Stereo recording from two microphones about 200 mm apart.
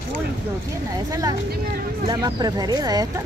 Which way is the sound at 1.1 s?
15° right (ahead or behind).